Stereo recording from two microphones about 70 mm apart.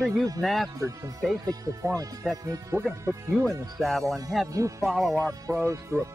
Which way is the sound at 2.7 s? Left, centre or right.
Right.